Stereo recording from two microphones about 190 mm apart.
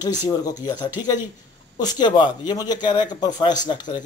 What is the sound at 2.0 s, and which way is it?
Speech, 25° left (ahead or behind).